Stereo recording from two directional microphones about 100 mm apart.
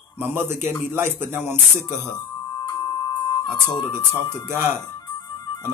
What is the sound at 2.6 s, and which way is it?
Music, 40° left (ahead or behind).